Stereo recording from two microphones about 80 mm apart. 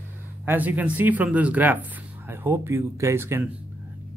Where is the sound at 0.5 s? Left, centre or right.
Right.